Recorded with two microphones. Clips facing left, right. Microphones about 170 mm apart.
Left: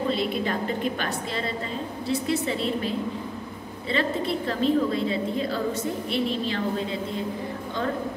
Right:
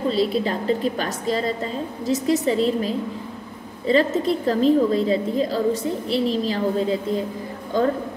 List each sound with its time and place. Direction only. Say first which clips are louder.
0.1 s a woman's voice: right 4 dB; 35° right (ahead or behind)